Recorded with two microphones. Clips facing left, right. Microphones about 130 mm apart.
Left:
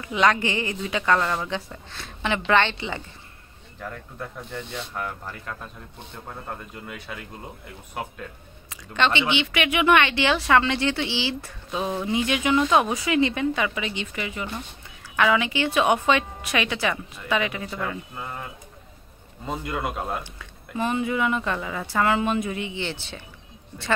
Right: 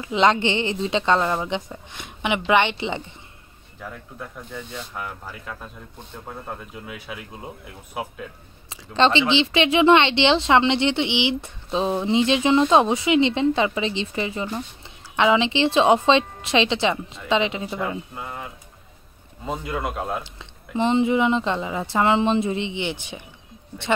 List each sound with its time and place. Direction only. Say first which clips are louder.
0.0 s speech: right 3 dB; 25° right (ahead or behind)
3.8 s speech: left 1 dB; 5° right (ahead or behind)
8.6 s speech: right 4 dB; 30° right (ahead or behind)
19.4 s speech: right 1 dB; centre (ahead or behind)
20.3 s speech: right 4 dB; 25° right (ahead or behind)